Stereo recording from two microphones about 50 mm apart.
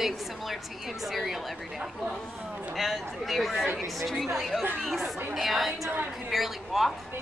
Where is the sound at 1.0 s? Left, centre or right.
Centre.